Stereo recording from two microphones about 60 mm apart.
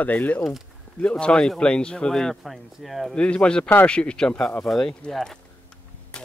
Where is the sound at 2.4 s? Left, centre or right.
Centre.